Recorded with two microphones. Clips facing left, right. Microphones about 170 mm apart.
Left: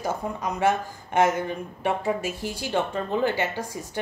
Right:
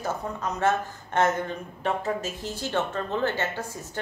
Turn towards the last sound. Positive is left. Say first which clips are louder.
# left 2 dB
turn(degrees=10)  # may be behind; listen again after turning